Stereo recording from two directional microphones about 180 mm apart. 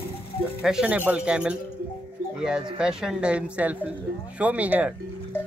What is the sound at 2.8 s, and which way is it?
A woman's voice, 5° right (ahead or behind).